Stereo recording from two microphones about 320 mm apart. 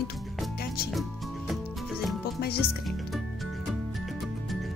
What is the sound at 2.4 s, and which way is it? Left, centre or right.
Music, left.